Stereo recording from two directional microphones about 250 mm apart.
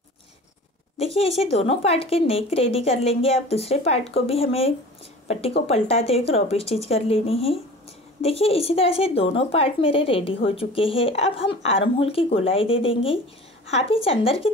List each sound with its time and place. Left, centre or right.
0.9 s speech: left